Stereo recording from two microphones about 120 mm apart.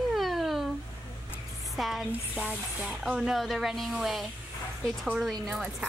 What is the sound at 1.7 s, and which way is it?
Speech, centre (ahead or behind).